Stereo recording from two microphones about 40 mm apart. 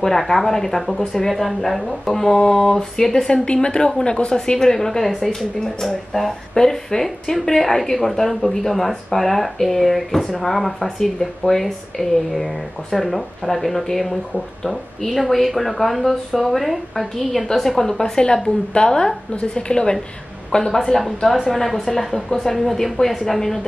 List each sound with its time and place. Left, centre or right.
0.0 s a woman's voice: centre
4.6 s a woman's voice: centre